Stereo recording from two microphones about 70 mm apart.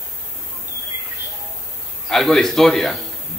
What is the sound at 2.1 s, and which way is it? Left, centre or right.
Speech, centre.